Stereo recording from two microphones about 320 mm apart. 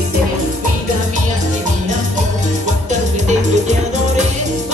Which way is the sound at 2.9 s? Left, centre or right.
Right.